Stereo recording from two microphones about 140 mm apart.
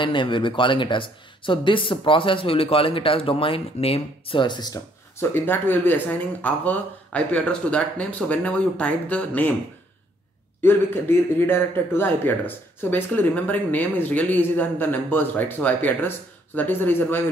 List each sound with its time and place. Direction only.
0.0 s speech: 35° left (ahead or behind)
5.2 s a man's voice: 15° left (ahead or behind)
10.6 s a man's voice: 15° left (ahead or behind)